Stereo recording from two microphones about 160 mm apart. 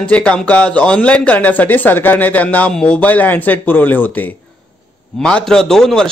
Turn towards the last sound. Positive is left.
turn(degrees=5)  # may be behind; listen again after turning